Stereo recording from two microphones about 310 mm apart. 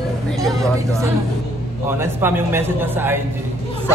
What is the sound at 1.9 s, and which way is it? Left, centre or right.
A man's voice, centre.